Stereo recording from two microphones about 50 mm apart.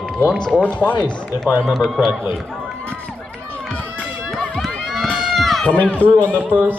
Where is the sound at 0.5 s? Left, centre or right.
Left.